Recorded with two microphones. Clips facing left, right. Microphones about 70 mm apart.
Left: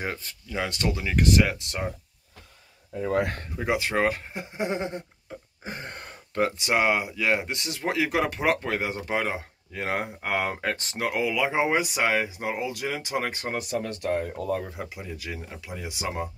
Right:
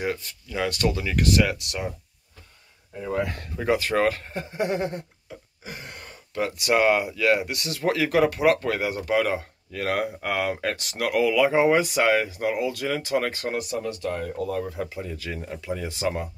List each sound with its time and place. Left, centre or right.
0.0 s speech: left
0.6 s speech: left
3.1 s speech: left
3.5 s speech: centre
5.6 s a sound: left
6.5 s speech: left
13.6 s speech: left
14.7 s speech: centre